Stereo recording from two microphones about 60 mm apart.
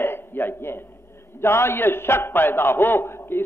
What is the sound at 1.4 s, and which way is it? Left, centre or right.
A man's voice, left.